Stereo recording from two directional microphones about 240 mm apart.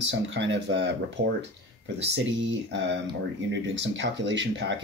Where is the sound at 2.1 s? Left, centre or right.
Right.